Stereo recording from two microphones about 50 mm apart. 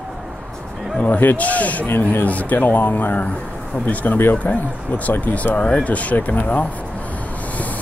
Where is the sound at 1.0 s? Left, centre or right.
Left.